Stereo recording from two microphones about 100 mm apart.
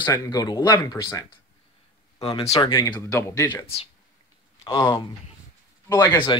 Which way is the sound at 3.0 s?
30° left (ahead or behind).